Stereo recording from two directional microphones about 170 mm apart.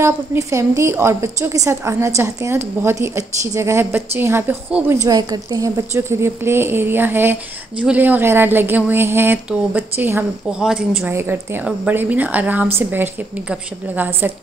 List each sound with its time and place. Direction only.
0.0 s a woman's voice: 15° right (ahead or behind)
5.0 s a woman's voice: 20° right (ahead or behind)